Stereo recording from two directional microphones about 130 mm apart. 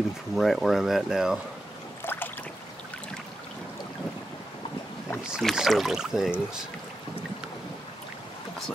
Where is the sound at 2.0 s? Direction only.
15° left (ahead or behind).